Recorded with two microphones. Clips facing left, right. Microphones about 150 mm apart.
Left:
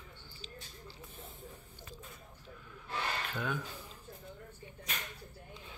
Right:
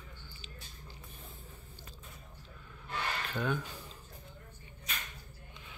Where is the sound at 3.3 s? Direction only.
5° left (ahead or behind).